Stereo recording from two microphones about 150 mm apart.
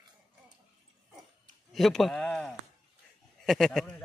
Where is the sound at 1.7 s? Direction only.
Centre (ahead or behind).